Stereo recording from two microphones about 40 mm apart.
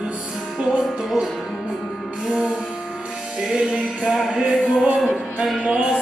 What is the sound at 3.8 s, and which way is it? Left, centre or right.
Music, centre.